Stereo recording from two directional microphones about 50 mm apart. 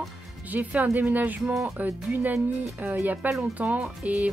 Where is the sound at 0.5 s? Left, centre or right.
Right.